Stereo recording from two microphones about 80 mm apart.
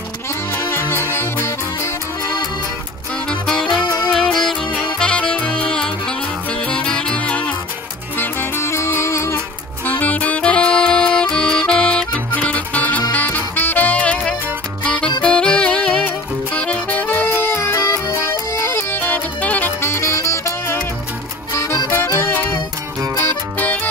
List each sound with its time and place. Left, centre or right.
0.6 s music: left
3.3 s saxophone: centre
4.1 s music: centre
8.2 s music: left
9.8 s music: left
19.8 s music: left